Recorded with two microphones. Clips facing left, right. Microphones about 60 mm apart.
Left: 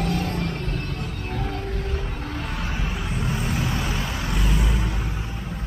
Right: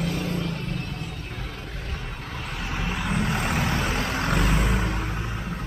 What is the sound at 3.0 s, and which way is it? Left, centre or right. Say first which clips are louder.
Vehicle: right 5 dB; right.